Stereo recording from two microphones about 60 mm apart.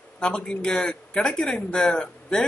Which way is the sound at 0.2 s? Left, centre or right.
Centre.